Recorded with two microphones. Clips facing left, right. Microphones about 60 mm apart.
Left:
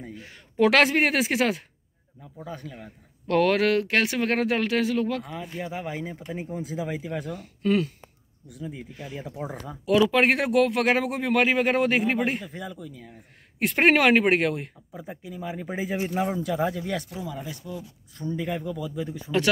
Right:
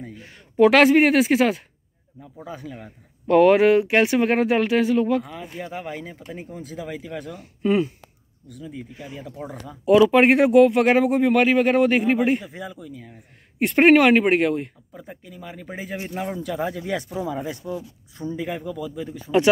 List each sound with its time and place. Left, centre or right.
0.0 s speech: centre
7.3 s speech: centre
8.5 s speech: centre
9.8 s speech: centre
17.5 s speech: right
18.1 s speech: centre
18.4 s speech: centre